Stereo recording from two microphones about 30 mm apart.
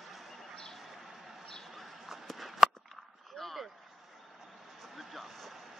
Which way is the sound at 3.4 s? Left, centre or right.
Centre.